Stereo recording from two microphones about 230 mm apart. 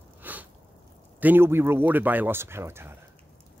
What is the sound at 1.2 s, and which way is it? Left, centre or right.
Speech, centre.